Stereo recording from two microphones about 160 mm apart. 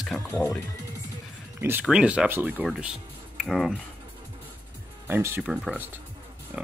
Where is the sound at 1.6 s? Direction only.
10° right (ahead or behind).